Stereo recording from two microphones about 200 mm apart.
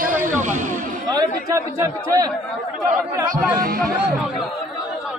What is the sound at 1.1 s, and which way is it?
A man's voice, 15° right (ahead or behind).